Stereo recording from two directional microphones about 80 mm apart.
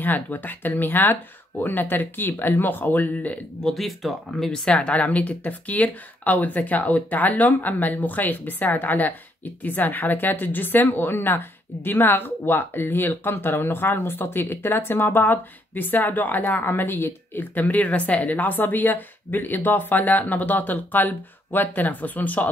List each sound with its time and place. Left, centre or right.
0.0 s speech: left
3.6 s speech: centre; by 22.5 s left